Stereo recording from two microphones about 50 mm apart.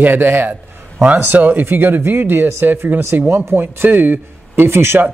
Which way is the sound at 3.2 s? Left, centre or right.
Right.